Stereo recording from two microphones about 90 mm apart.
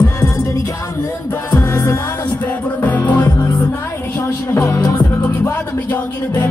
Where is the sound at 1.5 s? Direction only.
30° left (ahead or behind).